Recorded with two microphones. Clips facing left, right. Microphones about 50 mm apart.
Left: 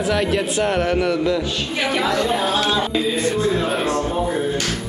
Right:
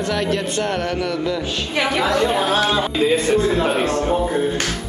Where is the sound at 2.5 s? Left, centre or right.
Right.